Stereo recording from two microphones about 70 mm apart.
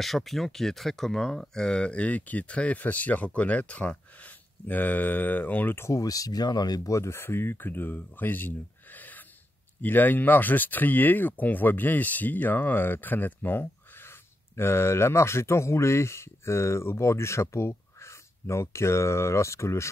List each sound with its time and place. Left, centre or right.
0.0 s speech: centre; by 5.9 s left
5.9 s speech: left
6.9 s speech: left